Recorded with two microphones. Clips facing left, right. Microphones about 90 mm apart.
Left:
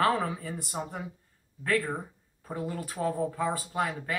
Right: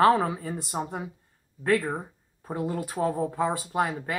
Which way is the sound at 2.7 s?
30° right (ahead or behind).